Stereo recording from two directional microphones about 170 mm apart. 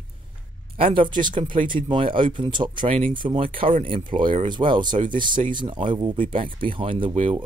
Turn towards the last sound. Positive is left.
turn(degrees=-35)  # may be behind; listen again after turning